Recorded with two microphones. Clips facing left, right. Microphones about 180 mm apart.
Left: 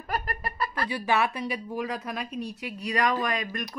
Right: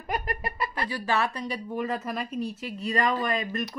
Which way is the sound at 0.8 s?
15° left (ahead or behind).